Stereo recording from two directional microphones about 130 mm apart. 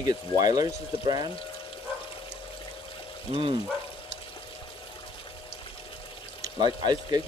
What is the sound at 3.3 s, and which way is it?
Speech, 50° right (ahead or behind).